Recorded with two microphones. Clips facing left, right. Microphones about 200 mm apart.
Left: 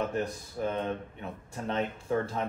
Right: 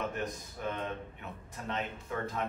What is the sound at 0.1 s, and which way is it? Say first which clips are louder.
Speech: left 5 dB; 30° left (ahead or behind).